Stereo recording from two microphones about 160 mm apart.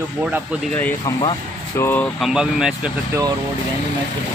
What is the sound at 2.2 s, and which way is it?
Speech, 5° right (ahead or behind).